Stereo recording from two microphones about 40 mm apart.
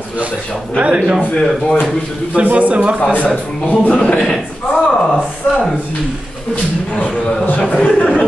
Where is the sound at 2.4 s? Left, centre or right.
Right.